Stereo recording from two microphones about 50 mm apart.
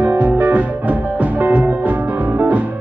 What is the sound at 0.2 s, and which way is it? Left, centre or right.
Music, right.